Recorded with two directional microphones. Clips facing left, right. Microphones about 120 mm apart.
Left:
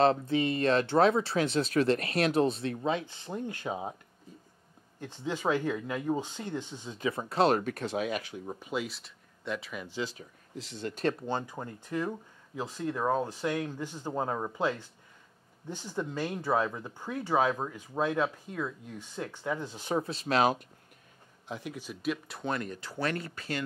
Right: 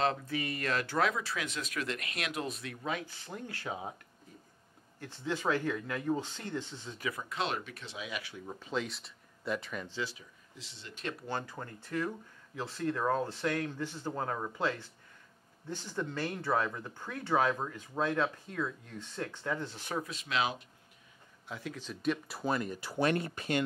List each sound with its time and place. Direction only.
0.0 s speech: 30° left (ahead or behind)
5.0 s speech: 15° left (ahead or behind); by 8.4 s 45° left (ahead or behind)
8.5 s speech: 15° left (ahead or behind)
8.8 s speech: centre (ahead or behind)
10.0 s speech: 45° left (ahead or behind)
11.2 s speech: 20° left (ahead or behind)
20.1 s speech: 40° left (ahead or behind)
21.5 s speech: 15° left (ahead or behind); by 23.6 s 20° right (ahead or behind)